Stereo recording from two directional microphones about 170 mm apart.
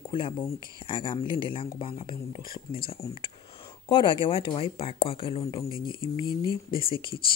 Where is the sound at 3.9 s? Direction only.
30° left (ahead or behind).